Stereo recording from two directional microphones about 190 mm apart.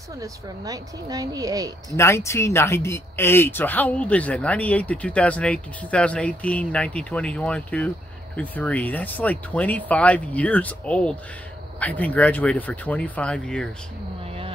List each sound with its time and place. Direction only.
0.2 s speech: 20° right (ahead or behind)
2.0 s speech: 15° left (ahead or behind)
14.2 s a sound: 30° right (ahead or behind)